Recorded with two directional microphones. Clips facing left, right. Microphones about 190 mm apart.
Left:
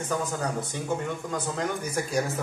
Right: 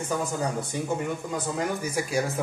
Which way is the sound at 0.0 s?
10° right (ahead or behind).